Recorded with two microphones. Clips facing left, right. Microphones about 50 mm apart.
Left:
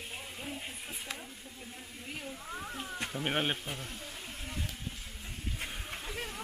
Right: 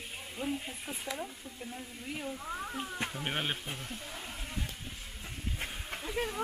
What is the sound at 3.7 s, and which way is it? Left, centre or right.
Speech, centre.